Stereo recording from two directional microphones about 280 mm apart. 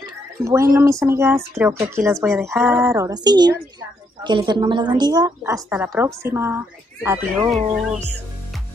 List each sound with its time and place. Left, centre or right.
0.4 s a woman's voice: centre